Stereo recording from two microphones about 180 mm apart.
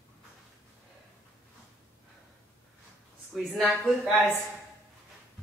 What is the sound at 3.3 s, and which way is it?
Speech, centre (ahead or behind).